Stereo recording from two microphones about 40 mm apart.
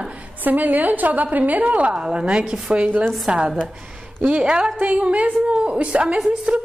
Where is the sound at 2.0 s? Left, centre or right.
Right.